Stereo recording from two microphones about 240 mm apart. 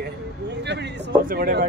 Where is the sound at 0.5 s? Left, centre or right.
Right.